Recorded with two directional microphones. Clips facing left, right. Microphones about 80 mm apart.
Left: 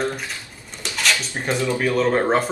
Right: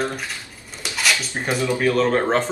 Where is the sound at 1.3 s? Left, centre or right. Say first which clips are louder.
Even; centre.